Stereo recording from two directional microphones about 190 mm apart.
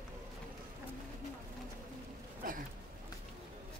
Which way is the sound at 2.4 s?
45° right (ahead or behind).